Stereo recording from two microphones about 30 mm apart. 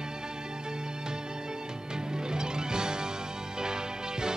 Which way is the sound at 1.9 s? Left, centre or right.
Right.